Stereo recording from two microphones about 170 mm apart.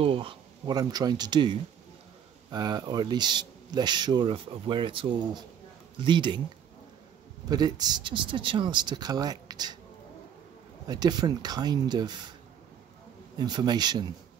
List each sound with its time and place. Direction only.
0.0 s speech: 30° right (ahead or behind)
7.4 s speech: 25° right (ahead or behind)
10.9 s speech: 25° right (ahead or behind)
13.4 s speech: 25° right (ahead or behind)